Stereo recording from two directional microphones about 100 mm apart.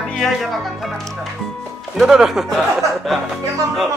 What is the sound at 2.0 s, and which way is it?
Speech, 5° right (ahead or behind).